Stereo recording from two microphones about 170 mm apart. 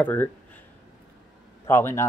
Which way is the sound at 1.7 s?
15° left (ahead or behind).